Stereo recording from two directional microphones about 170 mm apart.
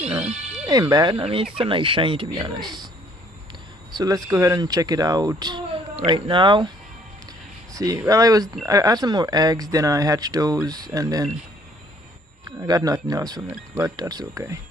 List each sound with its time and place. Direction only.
0.0 s music: 5° right (ahead or behind)
0.7 s speech: 20° right (ahead or behind)
3.9 s speech: 20° right (ahead or behind)
7.7 s speech: 20° right (ahead or behind)
12.4 s speech: 25° right (ahead or behind)